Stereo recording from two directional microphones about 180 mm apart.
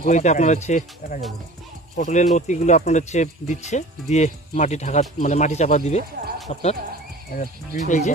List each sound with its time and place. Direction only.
0.0 s speech: 40° left (ahead or behind)